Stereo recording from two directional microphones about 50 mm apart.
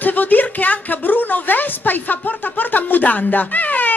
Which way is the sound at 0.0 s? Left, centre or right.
Left.